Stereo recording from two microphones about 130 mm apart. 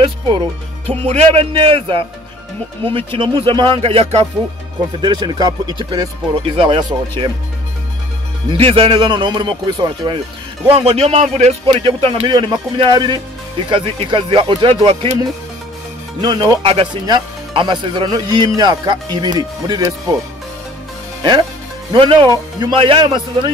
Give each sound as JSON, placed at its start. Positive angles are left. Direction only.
{"t": 0.8, "sound": "speech", "side_deg": -55}
{"t": 5.0, "sound": "speech", "side_deg": -30}
{"t": 6.3, "sound": "speech", "side_deg": -45}
{"t": 8.5, "sound": "speech", "side_deg": -45}
{"t": 10.7, "sound": "speech", "side_deg": -50}
{"t": 11.6, "sound": "speech", "side_deg": -45}
{"t": 16.2, "sound": "speech", "side_deg": -30}
{"t": 16.6, "sound": "speech", "side_deg": -45}
{"t": 17.0, "sound": "speech", "side_deg": -35}
{"t": 21.2, "sound": "speech", "side_deg": -35}